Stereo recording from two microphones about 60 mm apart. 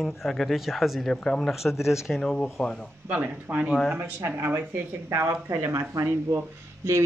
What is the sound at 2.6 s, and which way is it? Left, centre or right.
Speech, centre.